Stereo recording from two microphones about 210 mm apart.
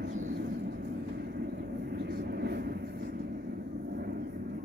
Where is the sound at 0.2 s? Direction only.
45° right (ahead or behind).